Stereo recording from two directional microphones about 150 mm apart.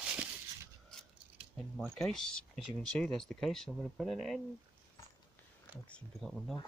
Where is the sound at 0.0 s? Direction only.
10° right (ahead or behind).